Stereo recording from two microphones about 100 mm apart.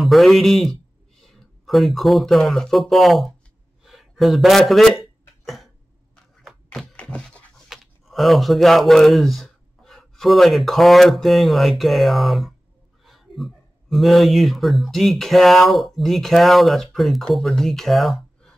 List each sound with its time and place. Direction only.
0.0 s speech: centre (ahead or behind)
3.8 s a sound: 5° right (ahead or behind)
6.9 s dog: 10° left (ahead or behind)
7.7 s speech: centre (ahead or behind)